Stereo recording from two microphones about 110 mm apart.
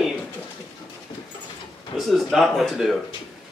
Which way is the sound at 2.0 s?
Centre (ahead or behind).